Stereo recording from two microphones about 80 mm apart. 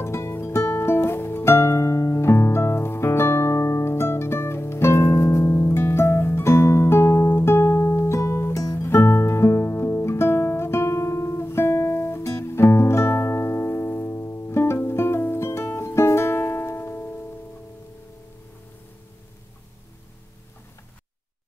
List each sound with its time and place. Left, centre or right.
0.0 s music: left